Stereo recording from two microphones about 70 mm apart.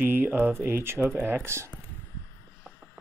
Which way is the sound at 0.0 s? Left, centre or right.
Right.